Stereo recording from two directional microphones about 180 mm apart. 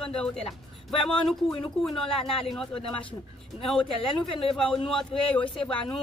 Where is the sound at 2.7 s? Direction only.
30° left (ahead or behind).